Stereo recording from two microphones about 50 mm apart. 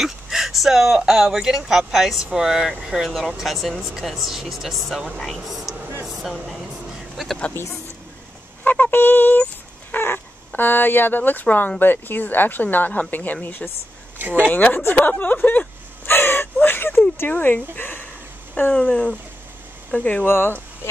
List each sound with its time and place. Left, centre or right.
0.0 s speech: centre
6.0 s a sound: centre
6.3 s speech: centre
8.6 s speech: left
14.1 s speech: right
14.5 s speech: left
16.1 s speech: left
18.7 s speech: left
20.2 s speech: left